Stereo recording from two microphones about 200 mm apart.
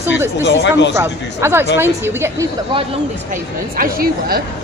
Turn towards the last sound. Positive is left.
turn(degrees=-50)  # may be behind; listen again after turning